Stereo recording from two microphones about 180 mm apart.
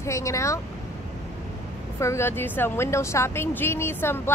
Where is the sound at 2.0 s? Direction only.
15° left (ahead or behind).